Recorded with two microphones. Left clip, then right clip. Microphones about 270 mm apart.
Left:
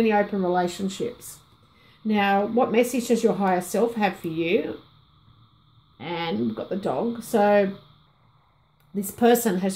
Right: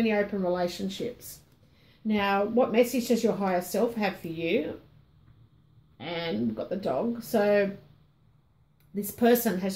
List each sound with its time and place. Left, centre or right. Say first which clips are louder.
0.0 s speech: left 5 dB; left
5.9 s speech: left 4 dB; left
8.9 s speech: left 4 dB; left